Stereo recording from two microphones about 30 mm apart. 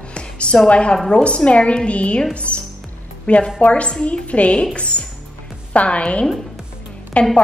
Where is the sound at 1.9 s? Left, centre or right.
Left.